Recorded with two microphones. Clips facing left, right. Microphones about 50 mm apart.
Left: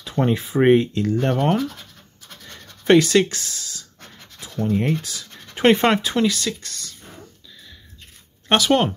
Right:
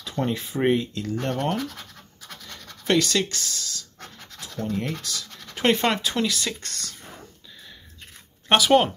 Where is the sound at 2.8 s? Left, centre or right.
Left.